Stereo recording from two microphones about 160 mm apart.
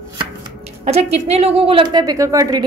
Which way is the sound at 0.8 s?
40° right (ahead or behind).